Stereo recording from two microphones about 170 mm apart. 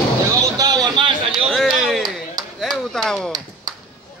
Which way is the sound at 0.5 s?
25° right (ahead or behind).